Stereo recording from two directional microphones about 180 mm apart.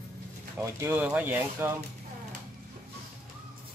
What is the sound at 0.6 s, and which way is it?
Speech, 15° right (ahead or behind).